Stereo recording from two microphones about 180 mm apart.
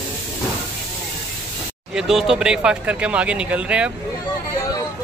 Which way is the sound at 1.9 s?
Centre (ahead or behind).